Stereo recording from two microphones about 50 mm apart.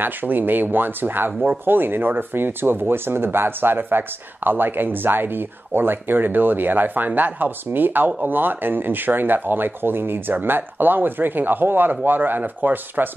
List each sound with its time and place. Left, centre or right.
0.0 s speech: right